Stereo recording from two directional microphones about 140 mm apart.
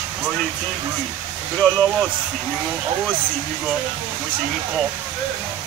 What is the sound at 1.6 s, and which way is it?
Speech, 5° left (ahead or behind).